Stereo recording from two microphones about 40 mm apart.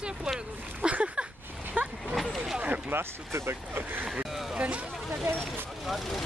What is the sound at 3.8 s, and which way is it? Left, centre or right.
Speech, right.